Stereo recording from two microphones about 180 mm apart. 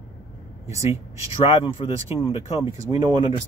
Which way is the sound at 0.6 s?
15° right (ahead or behind).